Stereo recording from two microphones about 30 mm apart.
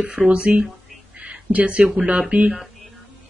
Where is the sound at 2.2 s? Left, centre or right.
Right.